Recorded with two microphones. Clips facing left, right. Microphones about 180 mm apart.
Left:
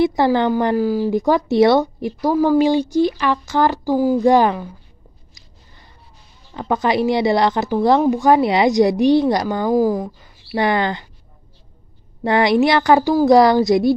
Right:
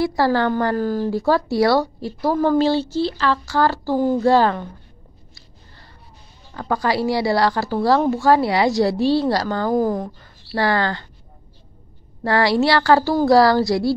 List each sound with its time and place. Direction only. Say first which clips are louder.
0.0 s a woman's voice: left 3 dB; 20° left (ahead or behind)
6.5 s a woman's voice: left 3 dB; 20° left (ahead or behind)
9.7 s speech: left 4 dB; 5° left (ahead or behind)
10.5 s speech: left 2 dB; 20° left (ahead or behind)
12.2 s speech: left 3 dB; 20° left (ahead or behind)